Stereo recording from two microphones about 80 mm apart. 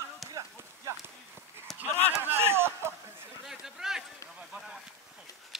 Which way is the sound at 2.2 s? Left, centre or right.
Right.